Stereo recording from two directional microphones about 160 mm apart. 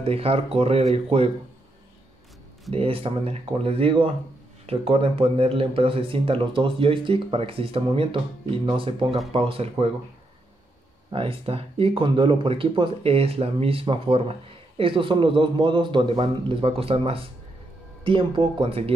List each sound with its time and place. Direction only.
0.0 s speech: 35° right (ahead or behind)
2.7 s speech: 35° right (ahead or behind)
11.1 s speech: 35° right (ahead or behind)